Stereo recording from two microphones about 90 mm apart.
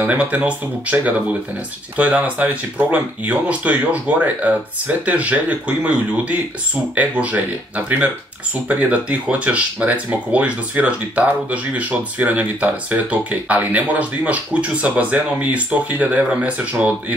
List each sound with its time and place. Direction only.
0.0 s speech: 15° right (ahead or behind)